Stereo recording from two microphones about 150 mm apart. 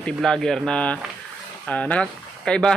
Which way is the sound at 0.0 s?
5° left (ahead or behind).